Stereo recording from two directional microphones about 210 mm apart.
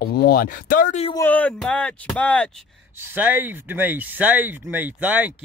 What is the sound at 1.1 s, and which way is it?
Speech, 10° left (ahead or behind).